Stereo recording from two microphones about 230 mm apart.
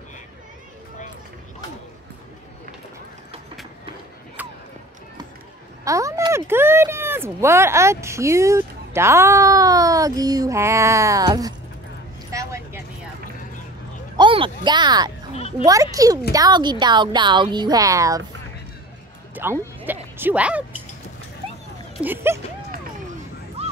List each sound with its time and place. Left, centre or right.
4.4 s a sound: centre
5.9 s speech: centre
12.3 s vehicle: centre
14.1 s speech: right
19.3 s speech: centre
22.0 s speech: centre
23.6 s a sound: right